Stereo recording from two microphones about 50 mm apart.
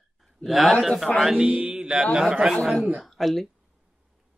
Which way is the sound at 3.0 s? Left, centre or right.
Centre.